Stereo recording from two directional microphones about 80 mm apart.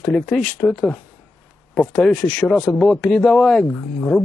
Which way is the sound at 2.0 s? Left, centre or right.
Centre.